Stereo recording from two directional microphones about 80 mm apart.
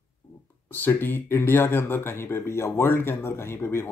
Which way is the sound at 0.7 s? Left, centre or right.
Left.